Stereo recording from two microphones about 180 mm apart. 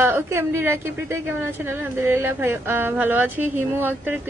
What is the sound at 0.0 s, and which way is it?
A woman's voice, 15° right (ahead or behind).